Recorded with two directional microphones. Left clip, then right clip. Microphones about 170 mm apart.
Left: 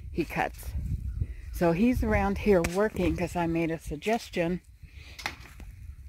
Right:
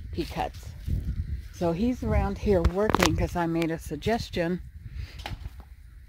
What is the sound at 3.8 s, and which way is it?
Speech, 15° right (ahead or behind).